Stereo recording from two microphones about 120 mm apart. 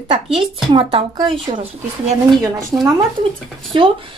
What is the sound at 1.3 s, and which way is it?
Speech, 45° right (ahead or behind).